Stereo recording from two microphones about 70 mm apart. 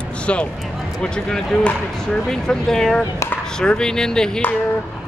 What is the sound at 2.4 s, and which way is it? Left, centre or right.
Speech, centre.